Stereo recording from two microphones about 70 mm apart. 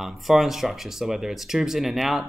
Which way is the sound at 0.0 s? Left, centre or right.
Centre.